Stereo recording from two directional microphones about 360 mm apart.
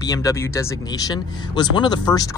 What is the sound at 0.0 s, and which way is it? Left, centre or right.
Speech, centre.